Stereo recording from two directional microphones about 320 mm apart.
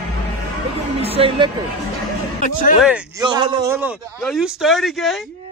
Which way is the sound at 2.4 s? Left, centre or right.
Left.